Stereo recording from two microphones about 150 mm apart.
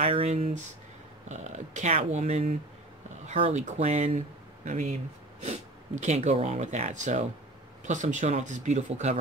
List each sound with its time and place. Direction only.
0.0 s speech: 45° right (ahead or behind)